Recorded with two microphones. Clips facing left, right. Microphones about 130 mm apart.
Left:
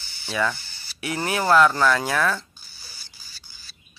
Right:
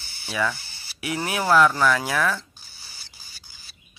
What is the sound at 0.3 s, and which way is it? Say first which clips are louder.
Speech: left 1 dB; 5° right (ahead or behind).